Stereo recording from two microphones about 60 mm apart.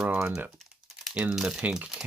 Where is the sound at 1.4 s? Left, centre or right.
Centre.